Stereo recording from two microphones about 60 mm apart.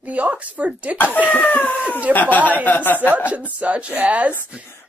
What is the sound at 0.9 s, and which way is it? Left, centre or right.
Speech, left.